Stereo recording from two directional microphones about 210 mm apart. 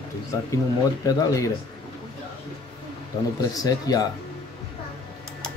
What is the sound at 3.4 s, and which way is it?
Speech, 15° left (ahead or behind).